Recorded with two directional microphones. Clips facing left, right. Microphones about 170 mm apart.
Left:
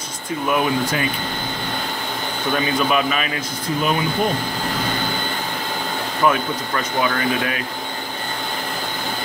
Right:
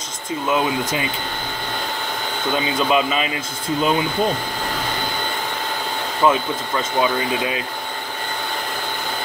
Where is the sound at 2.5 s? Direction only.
25° right (ahead or behind).